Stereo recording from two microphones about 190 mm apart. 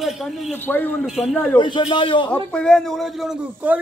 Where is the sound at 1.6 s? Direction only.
25° left (ahead or behind).